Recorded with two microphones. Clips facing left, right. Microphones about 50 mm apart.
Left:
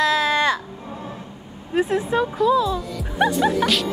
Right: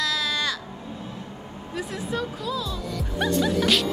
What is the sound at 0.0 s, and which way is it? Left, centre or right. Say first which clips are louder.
Music: left 8 dB; left.